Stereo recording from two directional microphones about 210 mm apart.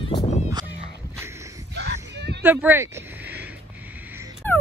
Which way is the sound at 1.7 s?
55° right (ahead or behind).